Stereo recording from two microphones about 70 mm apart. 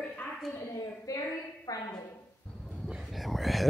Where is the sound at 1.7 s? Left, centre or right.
Left.